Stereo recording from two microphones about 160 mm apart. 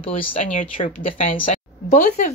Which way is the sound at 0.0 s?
35° left (ahead or behind).